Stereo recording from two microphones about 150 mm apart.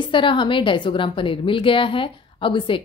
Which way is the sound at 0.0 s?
35° left (ahead or behind).